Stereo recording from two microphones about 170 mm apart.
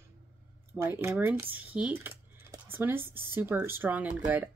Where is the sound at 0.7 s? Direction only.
15° right (ahead or behind).